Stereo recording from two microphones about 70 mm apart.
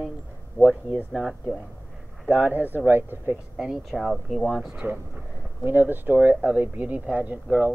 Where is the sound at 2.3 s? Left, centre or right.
Right.